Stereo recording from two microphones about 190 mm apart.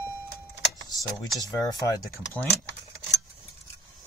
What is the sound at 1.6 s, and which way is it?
Speech, 20° left (ahead or behind).